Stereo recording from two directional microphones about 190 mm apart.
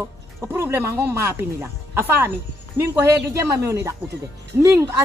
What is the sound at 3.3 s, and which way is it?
Speech, 15° right (ahead or behind).